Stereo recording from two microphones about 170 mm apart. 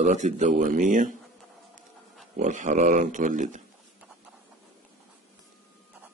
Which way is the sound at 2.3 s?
50° right (ahead or behind).